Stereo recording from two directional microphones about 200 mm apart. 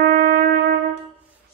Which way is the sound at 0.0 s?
40° right (ahead or behind).